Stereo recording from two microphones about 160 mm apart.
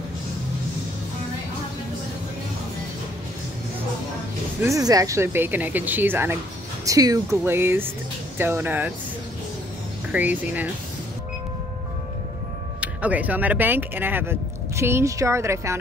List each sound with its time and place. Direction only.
4.6 s speech: 20° right (ahead or behind)
10.1 s speech: 10° right (ahead or behind)
12.8 s speech: 10° right (ahead or behind)